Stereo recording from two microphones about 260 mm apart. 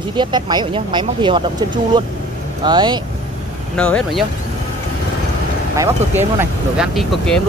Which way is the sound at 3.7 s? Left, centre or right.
Centre.